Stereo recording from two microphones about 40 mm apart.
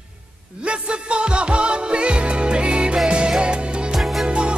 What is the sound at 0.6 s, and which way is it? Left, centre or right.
Music, right.